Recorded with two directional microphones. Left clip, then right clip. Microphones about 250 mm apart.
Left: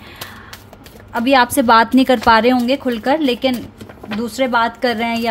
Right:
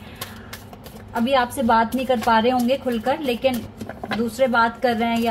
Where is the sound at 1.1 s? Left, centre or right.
Left.